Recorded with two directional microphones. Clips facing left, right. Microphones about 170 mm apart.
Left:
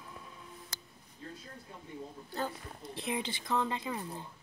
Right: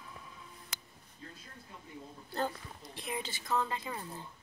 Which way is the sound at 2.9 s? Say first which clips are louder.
Left 4 dB; 25° left (ahead or behind).